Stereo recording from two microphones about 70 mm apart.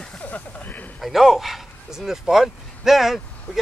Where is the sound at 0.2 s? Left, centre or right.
Left.